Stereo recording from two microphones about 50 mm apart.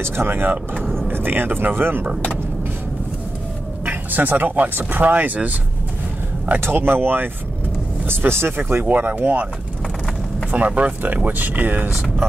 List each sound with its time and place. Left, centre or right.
0.0 s speech: right
3.8 s speech: right
6.6 s speech: right
8.8 s speech: right
10.5 s speech: right